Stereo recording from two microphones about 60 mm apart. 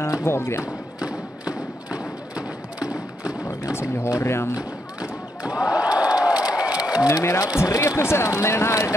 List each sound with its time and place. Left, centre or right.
0.0 s speech: left
1.5 s thump: centre
4.2 s speech: left
5.4 s a sound: centre
7.1 s speech: left
8.0 s speech: left